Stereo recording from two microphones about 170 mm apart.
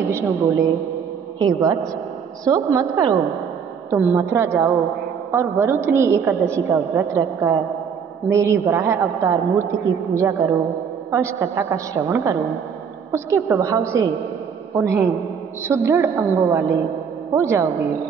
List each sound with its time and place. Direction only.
0.0 s a woman's voice: 15° right (ahead or behind)